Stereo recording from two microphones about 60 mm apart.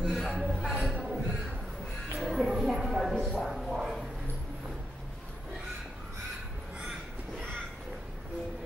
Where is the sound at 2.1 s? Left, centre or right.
Centre.